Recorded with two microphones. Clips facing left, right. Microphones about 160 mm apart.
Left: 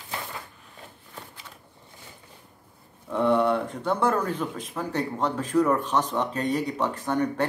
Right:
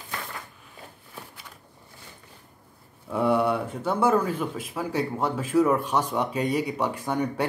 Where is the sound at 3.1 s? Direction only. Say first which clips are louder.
Left 1 dB; 10° right (ahead or behind).